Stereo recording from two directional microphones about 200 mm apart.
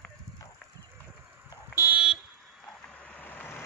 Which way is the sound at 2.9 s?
5° left (ahead or behind).